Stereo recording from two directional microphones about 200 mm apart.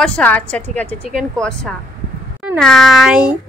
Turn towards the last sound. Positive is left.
turn(degrees=-5)  # may be behind; listen again after turning